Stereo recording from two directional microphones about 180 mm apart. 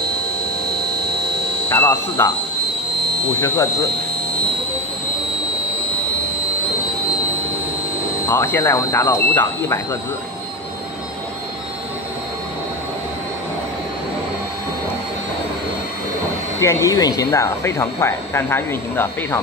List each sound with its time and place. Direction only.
1.7 s speech: 15° left (ahead or behind)
3.3 s speech: 15° left (ahead or behind)
8.3 s speech: 15° left (ahead or behind)
16.6 s speech: 20° left (ahead or behind)